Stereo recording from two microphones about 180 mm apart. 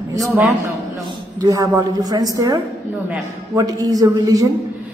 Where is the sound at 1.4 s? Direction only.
20° right (ahead or behind).